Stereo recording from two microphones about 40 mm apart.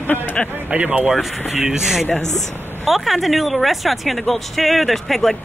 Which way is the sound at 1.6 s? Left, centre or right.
Centre.